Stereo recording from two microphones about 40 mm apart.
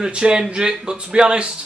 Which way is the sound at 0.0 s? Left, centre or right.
Right.